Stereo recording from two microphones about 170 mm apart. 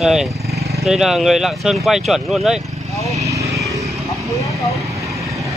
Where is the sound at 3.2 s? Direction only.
20° right (ahead or behind).